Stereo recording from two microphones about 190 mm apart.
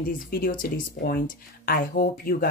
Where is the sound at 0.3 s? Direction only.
50° left (ahead or behind).